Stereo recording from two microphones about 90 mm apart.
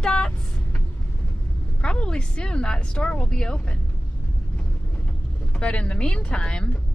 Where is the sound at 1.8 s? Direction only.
10° left (ahead or behind).